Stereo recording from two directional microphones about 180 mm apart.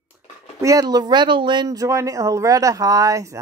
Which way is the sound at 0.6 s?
20° right (ahead or behind).